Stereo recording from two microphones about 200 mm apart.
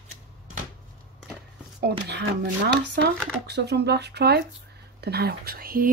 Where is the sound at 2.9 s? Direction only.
55° right (ahead or behind).